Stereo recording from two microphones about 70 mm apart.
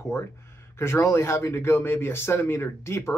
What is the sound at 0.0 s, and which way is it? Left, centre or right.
Speech, left.